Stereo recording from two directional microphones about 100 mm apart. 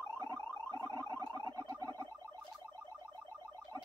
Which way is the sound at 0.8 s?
40° right (ahead or behind).